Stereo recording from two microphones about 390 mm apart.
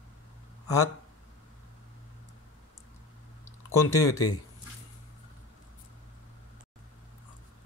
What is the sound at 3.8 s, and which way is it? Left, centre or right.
Speech, left.